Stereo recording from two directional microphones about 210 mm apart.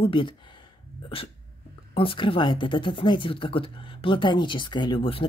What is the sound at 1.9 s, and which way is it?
Speech, 25° left (ahead or behind).